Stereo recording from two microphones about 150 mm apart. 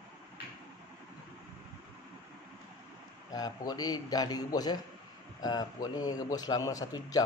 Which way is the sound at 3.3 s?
25° left (ahead or behind).